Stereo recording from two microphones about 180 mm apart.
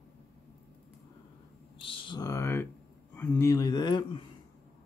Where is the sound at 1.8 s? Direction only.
25° left (ahead or behind).